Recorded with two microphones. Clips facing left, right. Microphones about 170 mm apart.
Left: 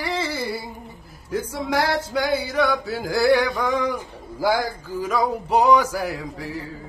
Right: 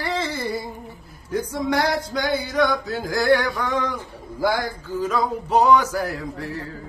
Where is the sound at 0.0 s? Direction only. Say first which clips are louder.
Even; 10° left (ahead or behind).